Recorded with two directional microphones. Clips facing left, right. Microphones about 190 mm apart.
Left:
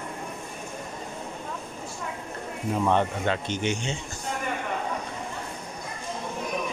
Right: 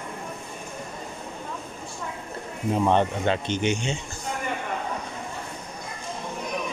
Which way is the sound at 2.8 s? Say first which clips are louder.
Right 2 dB; 25° right (ahead or behind).